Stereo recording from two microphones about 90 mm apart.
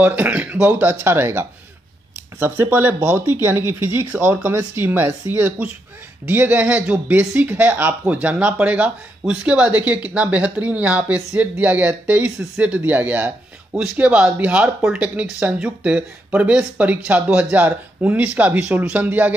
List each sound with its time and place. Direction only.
0.0 s speech: 20° right (ahead or behind)